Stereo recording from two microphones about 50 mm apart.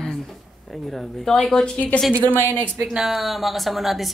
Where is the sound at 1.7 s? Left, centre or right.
Left.